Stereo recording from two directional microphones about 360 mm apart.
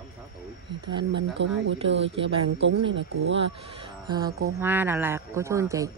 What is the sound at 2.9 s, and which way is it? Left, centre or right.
Speech, right.